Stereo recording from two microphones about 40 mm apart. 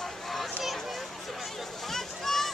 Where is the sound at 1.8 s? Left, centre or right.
Centre.